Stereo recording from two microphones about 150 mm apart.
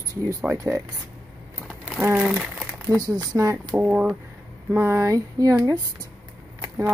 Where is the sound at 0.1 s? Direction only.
20° right (ahead or behind).